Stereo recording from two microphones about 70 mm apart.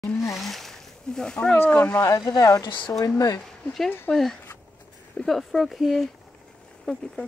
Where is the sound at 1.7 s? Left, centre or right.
Centre.